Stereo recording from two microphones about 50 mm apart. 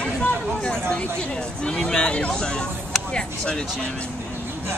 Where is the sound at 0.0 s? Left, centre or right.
Left.